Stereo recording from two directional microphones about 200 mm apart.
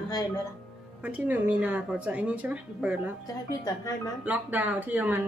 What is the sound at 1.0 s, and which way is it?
A woman's voice, 5° right (ahead or behind).